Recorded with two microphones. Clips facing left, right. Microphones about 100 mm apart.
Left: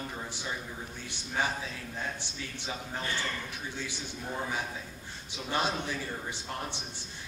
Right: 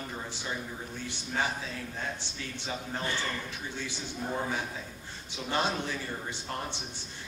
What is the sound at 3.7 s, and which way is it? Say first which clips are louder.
Speech: right 1 dB; 15° left (ahead or behind).